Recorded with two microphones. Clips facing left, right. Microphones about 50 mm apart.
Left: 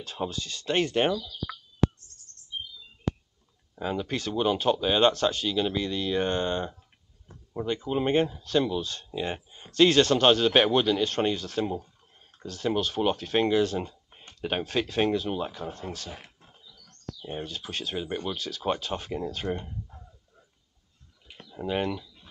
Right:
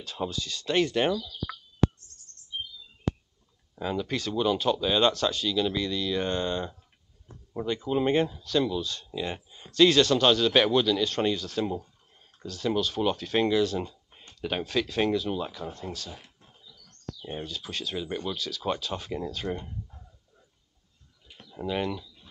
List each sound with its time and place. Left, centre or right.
0.3 s speech: left
3.8 s speech: left
11.6 s speech: centre
12.4 s speech: left
17.4 s speech: left
21.6 s speech: left